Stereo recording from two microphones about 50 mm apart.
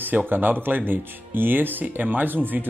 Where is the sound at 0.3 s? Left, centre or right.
Right.